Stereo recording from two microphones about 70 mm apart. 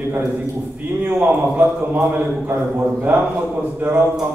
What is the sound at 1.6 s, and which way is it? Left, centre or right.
A man's voice, right.